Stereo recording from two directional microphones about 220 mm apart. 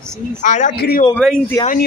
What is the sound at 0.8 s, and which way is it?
Speech, 45° left (ahead or behind).